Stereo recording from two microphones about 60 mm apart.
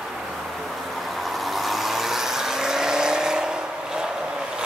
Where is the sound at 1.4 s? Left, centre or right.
Centre.